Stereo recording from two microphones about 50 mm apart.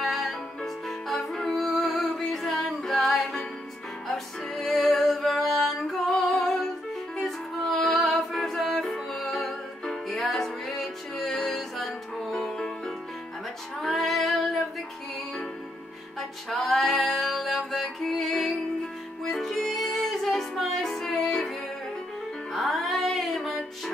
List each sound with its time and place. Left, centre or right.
0.0 s music: centre
13.7 s female singing: centre
16.2 s music: centre
22.5 s music: centre